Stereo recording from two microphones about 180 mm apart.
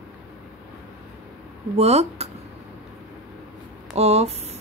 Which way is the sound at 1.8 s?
35° right (ahead or behind).